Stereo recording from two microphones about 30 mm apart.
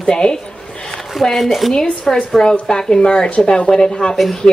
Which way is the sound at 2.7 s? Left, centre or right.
Left.